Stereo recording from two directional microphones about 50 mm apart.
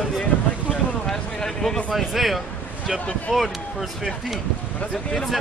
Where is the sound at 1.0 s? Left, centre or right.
Centre.